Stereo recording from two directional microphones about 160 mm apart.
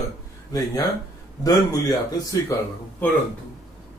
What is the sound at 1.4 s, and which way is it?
A man's voice, 25° left (ahead or behind).